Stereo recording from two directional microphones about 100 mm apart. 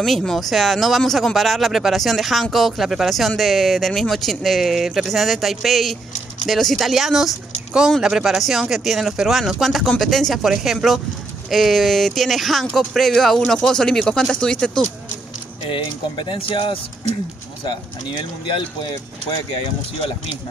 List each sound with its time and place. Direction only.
0.0 s speech: centre (ahead or behind)
15.6 s speech: 50° left (ahead or behind)
17.6 s speech: 55° left (ahead or behind)